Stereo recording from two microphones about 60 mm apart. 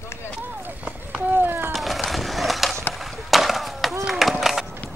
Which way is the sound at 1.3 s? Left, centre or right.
Right.